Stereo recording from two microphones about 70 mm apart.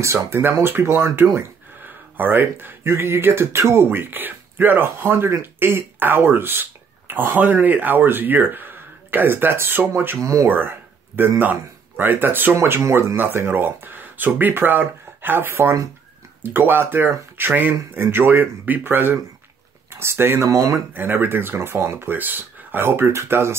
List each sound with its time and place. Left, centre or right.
0.3 s speech: right
12.5 s speech: right
20.4 s speech: right
20.9 s speech: right